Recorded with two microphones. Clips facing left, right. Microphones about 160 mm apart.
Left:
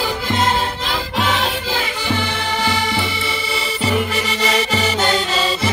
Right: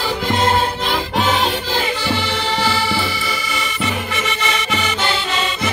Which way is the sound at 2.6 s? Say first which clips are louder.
Right 1 dB; 20° left (ahead or behind).